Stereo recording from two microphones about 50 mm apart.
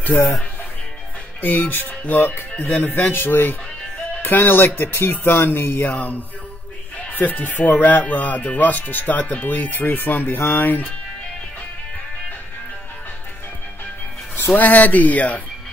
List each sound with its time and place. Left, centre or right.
1.4 s speech: left
5.9 s speech: left
14.6 s speech: left